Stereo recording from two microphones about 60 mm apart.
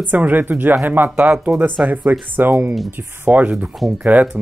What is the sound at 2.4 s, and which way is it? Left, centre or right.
Speech, right.